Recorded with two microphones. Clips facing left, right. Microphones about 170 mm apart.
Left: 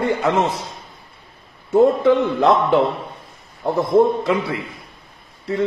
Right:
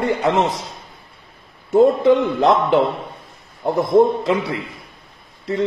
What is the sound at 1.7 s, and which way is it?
Speech, 20° right (ahead or behind).